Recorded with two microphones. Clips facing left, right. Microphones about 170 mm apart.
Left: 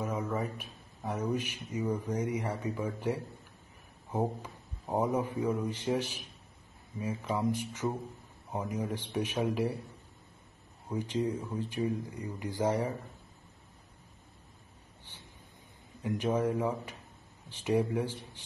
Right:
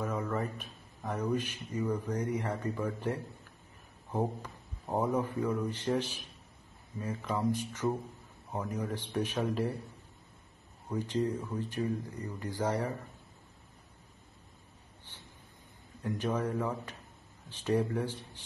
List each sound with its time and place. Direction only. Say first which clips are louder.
0.0 s a man's voice: even; 10° left (ahead or behind)
10.9 s a man's voice: even; 10° left (ahead or behind)
16.0 s a man's voice: left 3 dB; 15° left (ahead or behind)